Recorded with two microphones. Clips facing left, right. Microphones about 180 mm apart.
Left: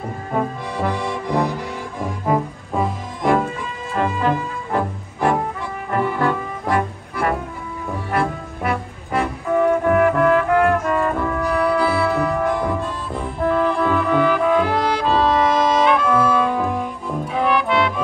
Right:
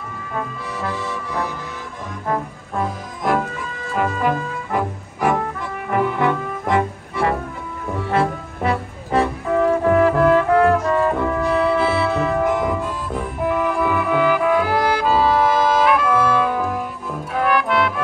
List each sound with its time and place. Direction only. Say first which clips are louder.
0.9 s accordion: left 5 dB; 15° left (ahead or behind)
2.2 s music: left 3 dB; 15° left (ahead or behind)
2.8 s music: left 2 dB; centre (ahead or behind)
5.9 s music: right 1 dB; 15° right (ahead or behind)